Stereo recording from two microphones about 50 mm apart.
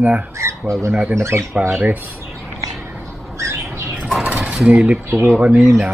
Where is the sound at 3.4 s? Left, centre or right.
Right.